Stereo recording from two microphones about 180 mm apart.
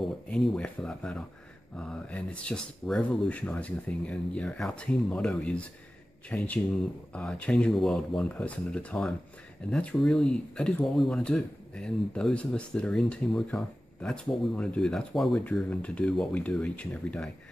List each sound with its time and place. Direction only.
0.0 s speech: centre (ahead or behind)